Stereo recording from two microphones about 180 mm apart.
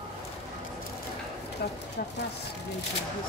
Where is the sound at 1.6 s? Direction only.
65° left (ahead or behind).